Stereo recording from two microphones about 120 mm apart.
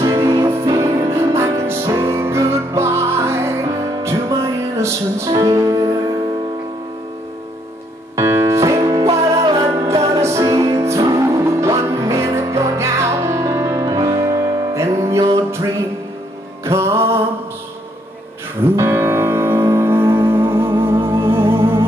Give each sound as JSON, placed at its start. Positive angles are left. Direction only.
{"t": 0.0, "sound": "music", "side_deg": -25}
{"t": 8.2, "sound": "music", "side_deg": -25}
{"t": 18.8, "sound": "music", "side_deg": -20}